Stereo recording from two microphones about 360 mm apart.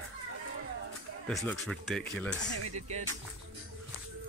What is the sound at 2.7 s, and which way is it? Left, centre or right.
Speech, centre.